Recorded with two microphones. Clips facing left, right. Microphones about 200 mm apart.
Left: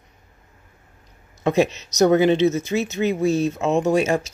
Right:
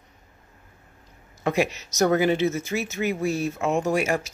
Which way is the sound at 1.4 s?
20° left (ahead or behind).